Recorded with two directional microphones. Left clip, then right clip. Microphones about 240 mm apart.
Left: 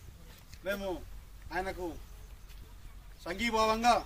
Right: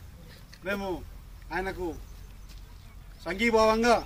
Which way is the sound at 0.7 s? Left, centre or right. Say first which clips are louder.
Right 3 dB; centre.